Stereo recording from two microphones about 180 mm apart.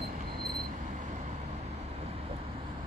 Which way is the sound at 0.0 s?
60° right (ahead or behind).